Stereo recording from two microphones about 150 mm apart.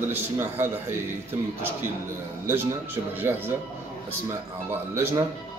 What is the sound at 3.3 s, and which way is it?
Speech, 15° right (ahead or behind).